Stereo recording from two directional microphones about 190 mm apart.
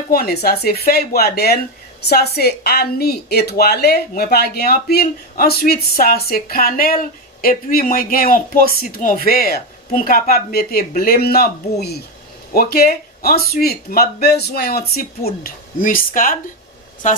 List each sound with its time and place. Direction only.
0.1 s a woman's voice: 55° left (ahead or behind)
12.5 s a woman's voice: 55° left (ahead or behind)